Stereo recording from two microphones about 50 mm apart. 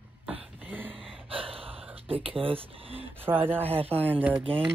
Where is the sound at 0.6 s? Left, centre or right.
Right.